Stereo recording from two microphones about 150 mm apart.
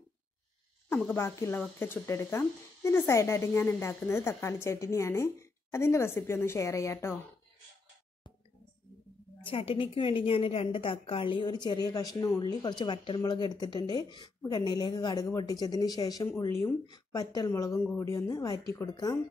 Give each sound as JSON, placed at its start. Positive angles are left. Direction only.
{"t": 1.1, "sound": "speech", "side_deg": 15}
{"t": 9.5, "sound": "a woman's voice", "side_deg": 35}